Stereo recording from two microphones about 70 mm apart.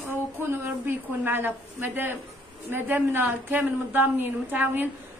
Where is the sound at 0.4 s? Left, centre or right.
Right.